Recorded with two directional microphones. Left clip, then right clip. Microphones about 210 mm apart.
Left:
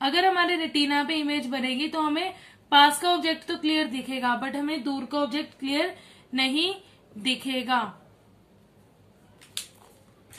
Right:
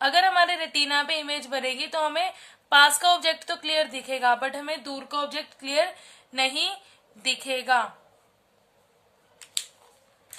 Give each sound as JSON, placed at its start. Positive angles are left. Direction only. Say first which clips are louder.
{"t": 0.0, "sound": "a woman's voice", "louder": "right 2 dB", "side_deg": -50}